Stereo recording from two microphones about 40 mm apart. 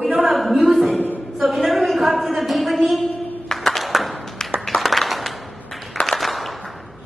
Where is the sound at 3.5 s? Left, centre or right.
Centre.